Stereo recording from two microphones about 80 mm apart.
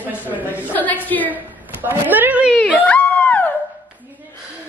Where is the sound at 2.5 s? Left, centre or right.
Centre.